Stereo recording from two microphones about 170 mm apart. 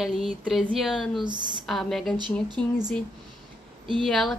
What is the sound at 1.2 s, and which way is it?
Speech, 25° right (ahead or behind).